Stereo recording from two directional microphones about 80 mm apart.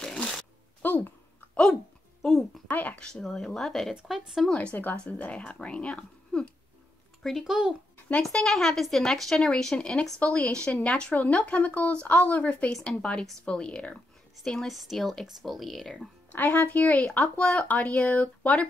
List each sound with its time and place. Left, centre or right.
0.0 s a sound: centre
0.8 s a sound: left
2.2 s speech: centre
2.7 s speech: centre
4.6 s speech: centre
7.2 s speech: centre
8.1 s speech: centre
16.3 s speech: centre